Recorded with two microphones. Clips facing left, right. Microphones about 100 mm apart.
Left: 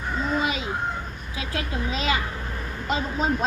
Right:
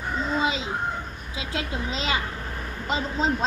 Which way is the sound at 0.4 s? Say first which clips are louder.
Right 1 dB; 25° right (ahead or behind).